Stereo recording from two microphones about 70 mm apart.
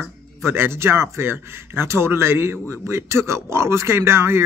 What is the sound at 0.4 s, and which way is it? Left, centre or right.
A man's voice, right.